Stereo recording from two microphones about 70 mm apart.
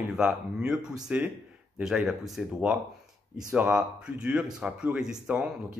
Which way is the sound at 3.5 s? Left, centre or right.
Centre.